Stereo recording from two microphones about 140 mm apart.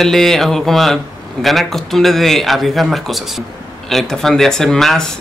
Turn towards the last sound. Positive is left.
turn(degrees=5)  # may be behind; listen again after turning